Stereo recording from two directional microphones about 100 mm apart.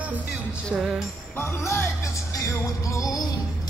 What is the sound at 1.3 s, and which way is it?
Music, 25° left (ahead or behind).